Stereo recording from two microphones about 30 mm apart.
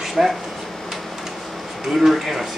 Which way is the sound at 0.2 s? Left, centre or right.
Centre.